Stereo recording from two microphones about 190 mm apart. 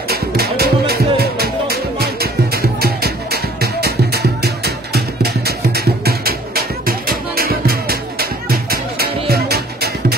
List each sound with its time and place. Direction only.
0.1 s music: 55° right (ahead or behind)